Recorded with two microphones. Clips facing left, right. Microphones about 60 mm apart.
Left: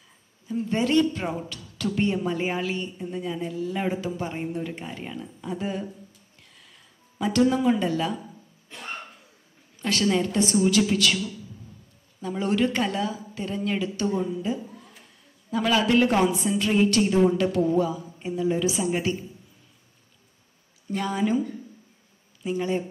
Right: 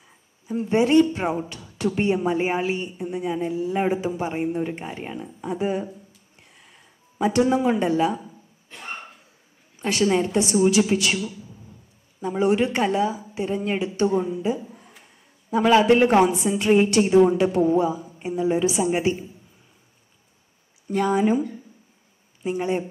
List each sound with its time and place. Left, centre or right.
0.5 s speech: right
6.5 s a sound: right
9.8 s speech: right
21.2 s speech: right